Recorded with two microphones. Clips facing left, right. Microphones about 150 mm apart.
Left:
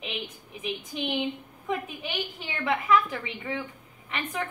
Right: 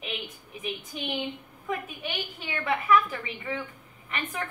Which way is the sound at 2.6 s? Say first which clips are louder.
Even; 15° left (ahead or behind).